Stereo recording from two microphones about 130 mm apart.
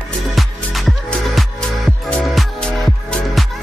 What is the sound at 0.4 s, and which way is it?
Music, centre (ahead or behind).